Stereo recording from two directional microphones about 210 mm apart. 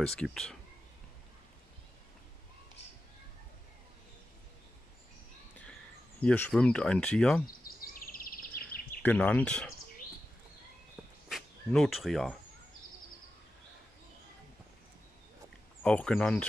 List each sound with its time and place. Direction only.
0.2 s speech: centre (ahead or behind)
6.2 s speech: 5° left (ahead or behind)
7.8 s a sound: 40° left (ahead or behind)
9.0 s speech: 5° left (ahead or behind)
11.2 s speech: centre (ahead or behind)
15.8 s speech: 5° left (ahead or behind)